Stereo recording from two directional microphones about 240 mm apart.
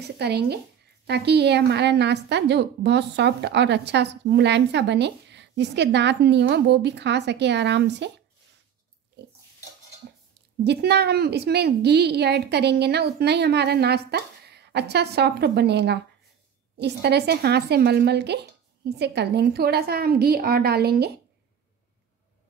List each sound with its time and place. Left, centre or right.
0.2 s a woman's voice: right
10.6 s a woman's voice: right